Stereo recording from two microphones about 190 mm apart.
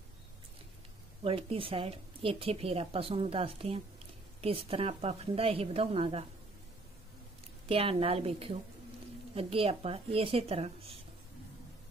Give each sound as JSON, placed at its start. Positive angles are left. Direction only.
{"t": 1.2, "sound": "a woman's voice", "side_deg": -30}
{"t": 7.6, "sound": "a woman's voice", "side_deg": -30}